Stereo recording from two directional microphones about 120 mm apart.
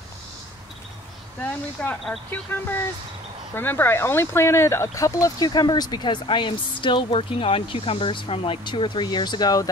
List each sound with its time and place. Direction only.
1.4 s speech: 15° left (ahead or behind)
3.5 s speech: 15° left (ahead or behind); by 9.7 s 30° left (ahead or behind)